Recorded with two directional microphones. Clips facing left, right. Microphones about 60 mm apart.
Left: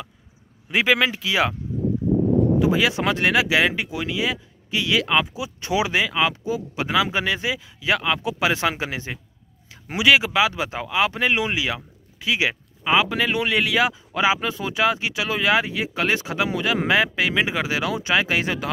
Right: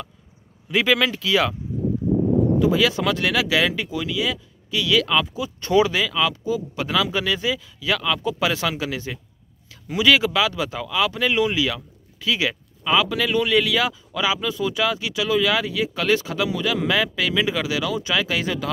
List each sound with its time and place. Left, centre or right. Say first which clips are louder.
0.7 s speech: even; left
2.6 s speech: right 1 dB; left